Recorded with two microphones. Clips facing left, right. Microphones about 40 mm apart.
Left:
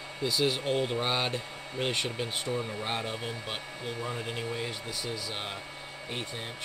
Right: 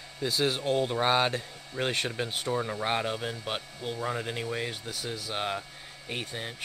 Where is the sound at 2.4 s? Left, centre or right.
Right.